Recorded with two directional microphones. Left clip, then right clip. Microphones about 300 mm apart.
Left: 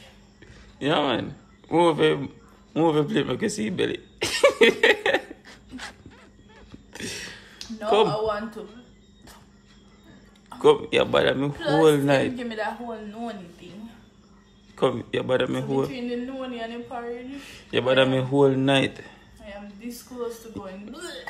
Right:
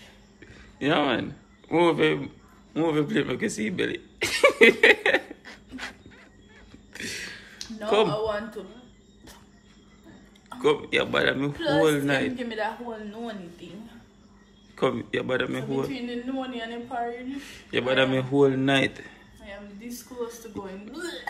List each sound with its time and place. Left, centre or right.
0.7 s a man's voice: centre
6.9 s a sound: centre
10.5 s a man's voice: centre
14.8 s a man's voice: centre